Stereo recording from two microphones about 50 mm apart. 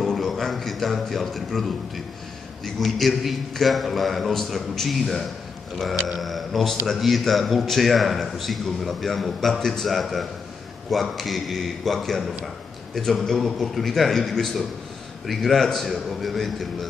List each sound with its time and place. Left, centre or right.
0.0 s music: centre
2.6 s a man's voice: centre